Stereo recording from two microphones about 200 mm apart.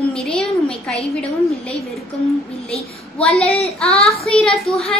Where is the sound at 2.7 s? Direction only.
30° left (ahead or behind).